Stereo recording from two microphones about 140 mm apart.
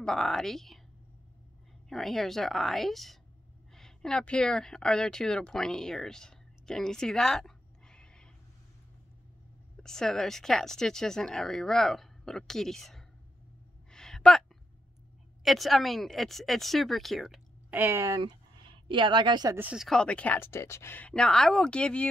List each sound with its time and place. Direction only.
0.0 s speech: 5° left (ahead or behind)
1.9 s speech: centre (ahead or behind)
9.8 s speech: 5° left (ahead or behind)
13.8 s a sound: 5° left (ahead or behind)
15.4 s speech: centre (ahead or behind)
17.7 s speech: 15° right (ahead or behind)
18.2 s a sound: 35° right (ahead or behind)
19.5 s speech: 15° right (ahead or behind)
19.8 s speech: 5° left (ahead or behind)